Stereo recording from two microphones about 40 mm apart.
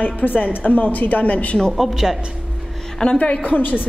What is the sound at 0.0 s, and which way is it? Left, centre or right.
A woman's voice, left.